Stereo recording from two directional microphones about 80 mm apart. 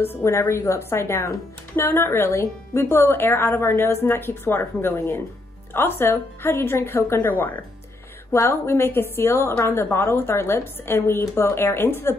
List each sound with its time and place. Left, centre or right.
0.0 s a woman's voice: left